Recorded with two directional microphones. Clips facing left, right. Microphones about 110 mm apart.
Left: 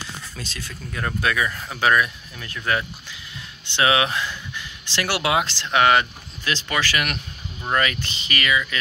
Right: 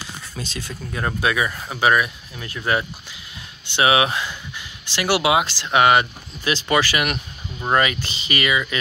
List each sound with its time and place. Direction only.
0.4 s speech: 20° right (ahead or behind)